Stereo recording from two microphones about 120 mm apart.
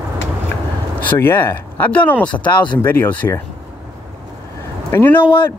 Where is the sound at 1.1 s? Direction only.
20° left (ahead or behind).